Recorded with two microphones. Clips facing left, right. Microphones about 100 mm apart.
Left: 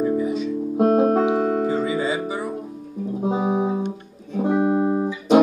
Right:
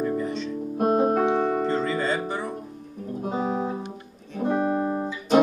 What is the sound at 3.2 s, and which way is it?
Music, 20° left (ahead or behind).